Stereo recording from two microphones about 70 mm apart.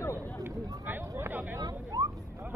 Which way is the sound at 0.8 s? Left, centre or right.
Right.